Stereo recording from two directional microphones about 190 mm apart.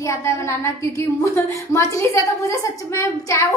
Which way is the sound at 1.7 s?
15° left (ahead or behind).